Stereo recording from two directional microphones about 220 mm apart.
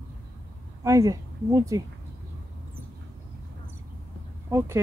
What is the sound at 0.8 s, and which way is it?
Speech, 15° right (ahead or behind).